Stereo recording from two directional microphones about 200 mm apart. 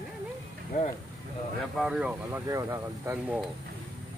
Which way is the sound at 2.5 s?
15° right (ahead or behind).